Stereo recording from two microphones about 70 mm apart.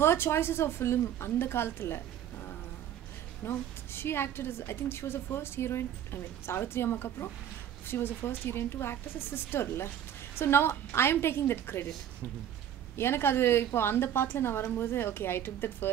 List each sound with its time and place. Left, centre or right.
0.0 s a woman's voice: left
3.4 s a woman's voice: left
12.9 s a woman's voice: left